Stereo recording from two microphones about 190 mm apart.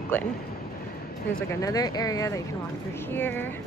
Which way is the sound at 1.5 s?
20° left (ahead or behind).